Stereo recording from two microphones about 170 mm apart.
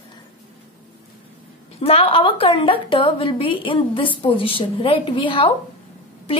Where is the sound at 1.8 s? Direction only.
35° left (ahead or behind).